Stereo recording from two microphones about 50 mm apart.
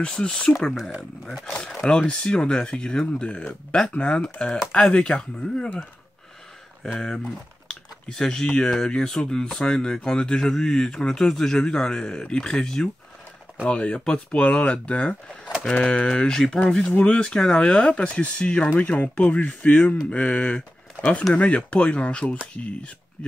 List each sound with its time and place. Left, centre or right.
0.0 s speech: left
0.6 s speech: centre
6.8 s speech: centre
8.1 s speech: centre
16.9 s speech: left